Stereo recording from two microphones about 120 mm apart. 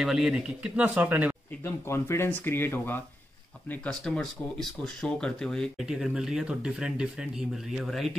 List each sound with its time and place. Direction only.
0.0 s speech: 5° right (ahead or behind)
1.6 s speech: 20° left (ahead or behind); by 8.1 s centre (ahead or behind)